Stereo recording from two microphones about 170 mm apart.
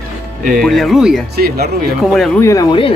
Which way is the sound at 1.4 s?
65° right (ahead or behind).